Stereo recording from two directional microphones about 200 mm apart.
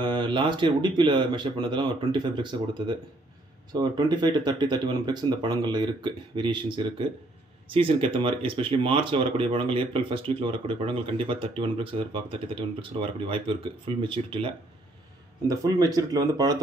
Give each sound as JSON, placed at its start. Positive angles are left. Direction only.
{"t": 0.0, "sound": "speech", "side_deg": -25}